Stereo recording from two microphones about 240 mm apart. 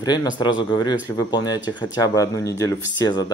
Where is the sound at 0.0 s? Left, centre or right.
Centre.